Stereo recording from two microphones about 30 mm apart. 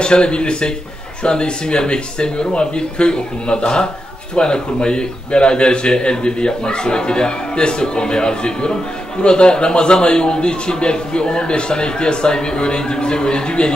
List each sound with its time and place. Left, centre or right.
0.0 s a man's voice: left